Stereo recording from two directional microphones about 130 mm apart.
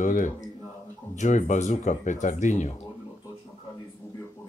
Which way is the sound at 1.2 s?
65° left (ahead or behind).